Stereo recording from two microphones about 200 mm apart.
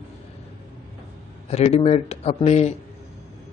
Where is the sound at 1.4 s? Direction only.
30° left (ahead or behind).